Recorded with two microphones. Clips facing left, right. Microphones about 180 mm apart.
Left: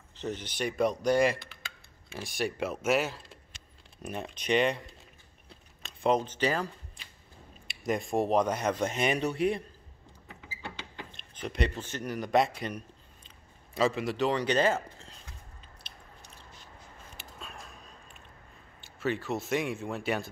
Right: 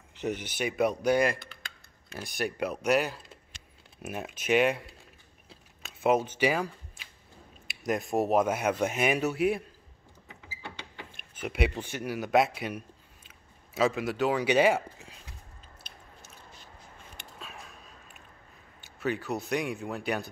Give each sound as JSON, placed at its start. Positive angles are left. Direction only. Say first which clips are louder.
{"t": 0.1, "sound": "speech", "louder": "right 3 dB", "side_deg": -15}
{"t": 5.5, "sound": "a sound", "louder": "even", "side_deg": -5}
{"t": 7.6, "sound": "speech", "louder": "right 1 dB", "side_deg": 0}
{"t": 11.1, "sound": "speech", "louder": "right 3 dB", "side_deg": -10}
{"t": 17.2, "sound": "a sound", "louder": "even", "side_deg": 0}
{"t": 18.8, "sound": "speech", "louder": "even", "side_deg": 0}